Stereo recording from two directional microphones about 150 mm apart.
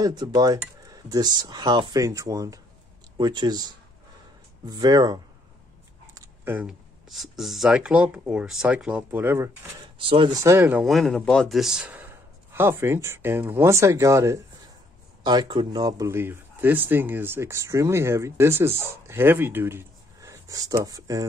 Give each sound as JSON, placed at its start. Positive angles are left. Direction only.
{"t": 0.0, "sound": "speech", "side_deg": -25}
{"t": 6.1, "sound": "a sound", "side_deg": -15}
{"t": 7.1, "sound": "speech", "side_deg": 0}
{"t": 9.9, "sound": "speech", "side_deg": -35}